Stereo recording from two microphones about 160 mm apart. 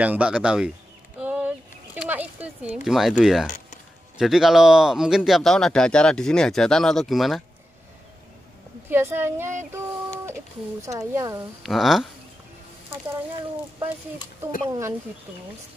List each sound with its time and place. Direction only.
0.0 s a woman's voice: 10° right (ahead or behind)
1.2 s a sound: 10° right (ahead or behind)
2.0 s speech: 10° right (ahead or behind)
3.4 s a sound: 50° left (ahead or behind)
4.2 s speech: centre (ahead or behind)
8.8 s a woman's voice: 15° right (ahead or behind)
9.7 s a sound: 15° right (ahead or behind)
10.8 s speech: 20° right (ahead or behind)
11.6 s speech: centre (ahead or behind)
14.7 s a woman's voice: 15° right (ahead or behind)